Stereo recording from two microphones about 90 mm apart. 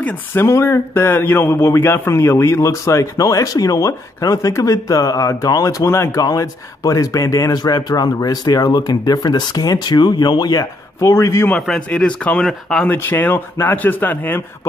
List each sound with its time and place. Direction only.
0.0 s speech: 25° left (ahead or behind); by 10.6 s 50° left (ahead or behind)
10.6 s a man's voice: 30° left (ahead or behind)
11.5 s a man's voice: 5° left (ahead or behind)
12.9 s speech: 25° left (ahead or behind)